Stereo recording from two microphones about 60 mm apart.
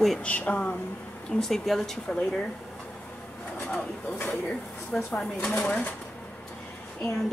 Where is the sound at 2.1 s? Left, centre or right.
Centre.